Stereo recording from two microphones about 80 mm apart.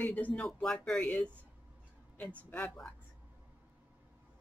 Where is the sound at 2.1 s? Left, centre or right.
Centre.